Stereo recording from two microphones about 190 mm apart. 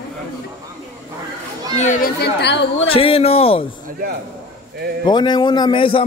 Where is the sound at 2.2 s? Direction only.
65° left (ahead or behind).